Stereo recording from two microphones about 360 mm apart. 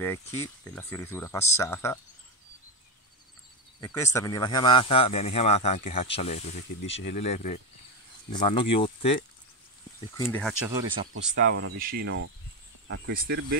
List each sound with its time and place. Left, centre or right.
0.0 s speech: centre
3.8 s speech: centre
10.7 s speech: centre
11.1 s cricket: right